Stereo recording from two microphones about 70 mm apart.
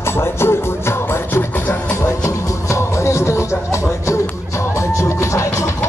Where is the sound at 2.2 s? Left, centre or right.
Left.